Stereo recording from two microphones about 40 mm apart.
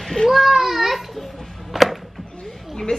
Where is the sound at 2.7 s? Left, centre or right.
Centre.